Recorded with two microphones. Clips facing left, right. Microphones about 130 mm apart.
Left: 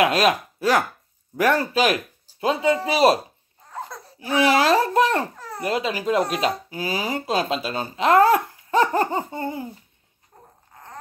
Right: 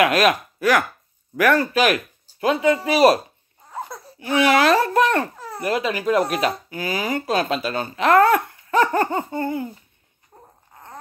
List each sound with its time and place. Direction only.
0.0 s speech: 30° left (ahead or behind)
3.9 s a sound: 10° right (ahead or behind)
4.4 s a child's voice: 30° left (ahead or behind)